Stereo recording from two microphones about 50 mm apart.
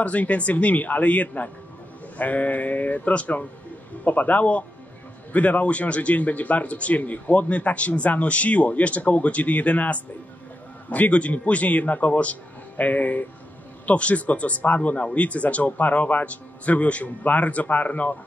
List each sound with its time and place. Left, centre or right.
0.0 s speech: left